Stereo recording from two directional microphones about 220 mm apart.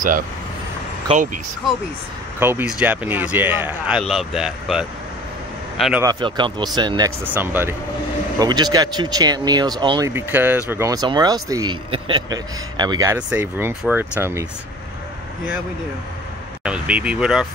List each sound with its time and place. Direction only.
1.0 s speech: 35° right (ahead or behind)
2.4 s a man's voice: 10° right (ahead or behind)
6.0 s speech: 20° right (ahead or behind)
7.2 s speech: 10° right (ahead or behind)
16.6 s speech: 5° right (ahead or behind)